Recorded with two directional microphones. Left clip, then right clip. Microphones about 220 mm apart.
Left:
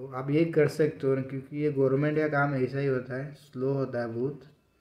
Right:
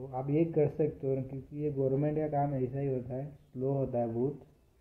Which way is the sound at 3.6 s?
25° left (ahead or behind).